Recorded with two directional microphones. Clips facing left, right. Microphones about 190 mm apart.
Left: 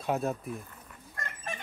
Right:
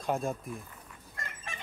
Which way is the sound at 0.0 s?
5° left (ahead or behind).